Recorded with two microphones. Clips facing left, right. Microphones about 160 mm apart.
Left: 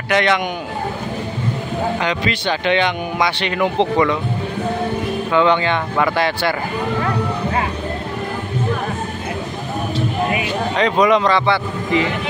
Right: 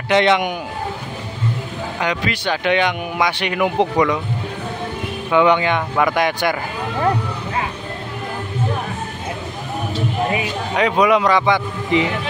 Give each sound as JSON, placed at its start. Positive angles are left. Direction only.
{"t": 0.1, "sound": "a man's voice", "side_deg": -20}
{"t": 2.0, "sound": "speech", "side_deg": -10}
{"t": 5.3, "sound": "speech", "side_deg": -15}
{"t": 10.8, "sound": "speech", "side_deg": -10}